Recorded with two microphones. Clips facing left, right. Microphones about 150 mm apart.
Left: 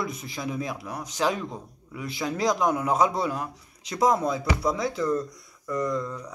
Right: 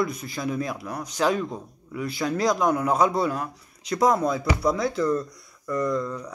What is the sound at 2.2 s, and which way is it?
Speech, 20° left (ahead or behind).